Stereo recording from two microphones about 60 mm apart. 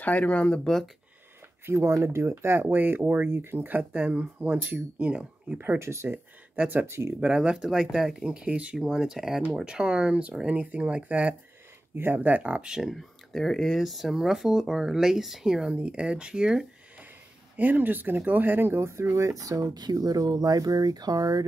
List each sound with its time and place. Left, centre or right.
0.0 s speech: left
1.7 s speech: right
3.3 s speech: right; by 5.6 s centre
5.8 s speech: right
6.0 s speech: right
7.2 s speech: centre
8.7 s speech: centre
11.9 s speech: right
12.9 s speech: centre
17.6 s speech: right